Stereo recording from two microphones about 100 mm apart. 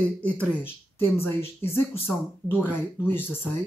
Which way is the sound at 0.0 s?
15° left (ahead or behind).